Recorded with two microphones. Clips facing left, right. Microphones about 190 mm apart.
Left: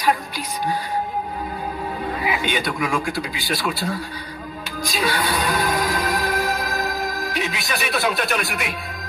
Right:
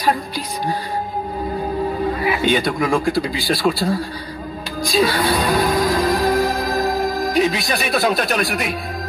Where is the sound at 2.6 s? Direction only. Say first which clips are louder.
Right 5 dB; 30° right (ahead or behind).